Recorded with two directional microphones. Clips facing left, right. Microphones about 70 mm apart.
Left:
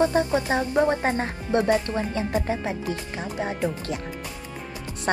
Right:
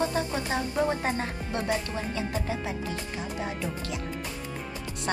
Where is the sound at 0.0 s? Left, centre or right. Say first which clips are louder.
Left 7 dB; left.